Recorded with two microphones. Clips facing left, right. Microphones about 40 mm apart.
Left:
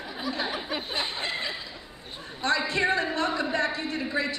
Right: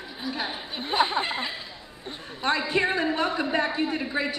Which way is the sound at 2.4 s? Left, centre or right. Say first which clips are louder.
Right 1 dB; right.